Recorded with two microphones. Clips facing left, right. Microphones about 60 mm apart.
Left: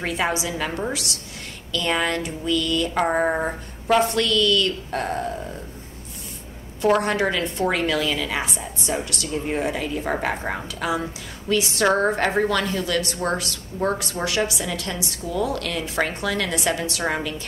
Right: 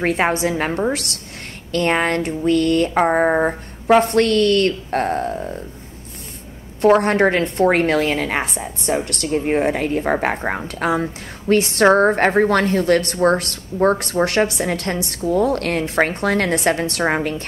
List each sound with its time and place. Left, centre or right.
0.0 s a woman's voice: right
3.1 s speech: right
4.0 s a woman's voice: right
7.0 s a woman's voice: right